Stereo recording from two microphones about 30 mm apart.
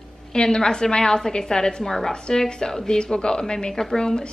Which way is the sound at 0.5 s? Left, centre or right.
Left.